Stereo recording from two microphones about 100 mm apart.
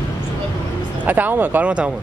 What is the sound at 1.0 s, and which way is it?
Speech, 15° right (ahead or behind).